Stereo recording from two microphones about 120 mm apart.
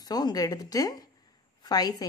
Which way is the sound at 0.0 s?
35° left (ahead or behind).